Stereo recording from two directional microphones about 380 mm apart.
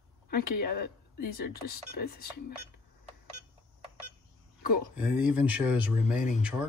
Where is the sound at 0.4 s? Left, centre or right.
Left.